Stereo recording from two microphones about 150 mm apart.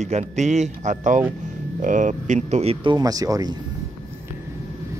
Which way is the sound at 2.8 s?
25° right (ahead or behind).